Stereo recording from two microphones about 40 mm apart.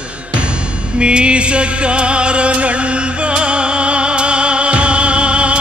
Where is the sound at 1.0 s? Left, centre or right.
Right.